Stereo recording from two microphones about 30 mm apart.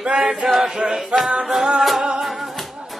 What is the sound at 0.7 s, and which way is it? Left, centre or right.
Chant, centre.